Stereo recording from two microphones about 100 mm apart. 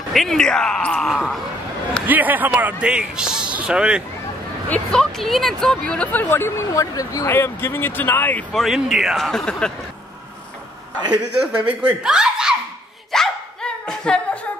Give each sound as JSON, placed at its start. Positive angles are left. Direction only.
{"t": 0.1, "sound": "a man's voice", "side_deg": 5}
{"t": 2.0, "sound": "a man's voice", "side_deg": -15}
{"t": 4.6, "sound": "speech", "side_deg": 10}
{"t": 5.2, "sound": "a man's voice", "side_deg": 0}
{"t": 6.3, "sound": "speech", "side_deg": 25}
{"t": 7.3, "sound": "speech", "side_deg": 25}
{"t": 8.5, "sound": "a man's voice", "side_deg": 0}
{"t": 11.6, "sound": "speech", "side_deg": -5}
{"t": 13.1, "sound": "a sound", "side_deg": 5}